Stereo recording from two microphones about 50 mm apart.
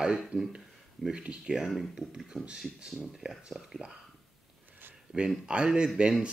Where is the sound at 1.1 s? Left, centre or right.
Right.